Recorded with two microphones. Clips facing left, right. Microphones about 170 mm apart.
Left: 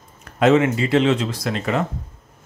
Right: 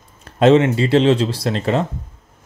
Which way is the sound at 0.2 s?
30° right (ahead or behind).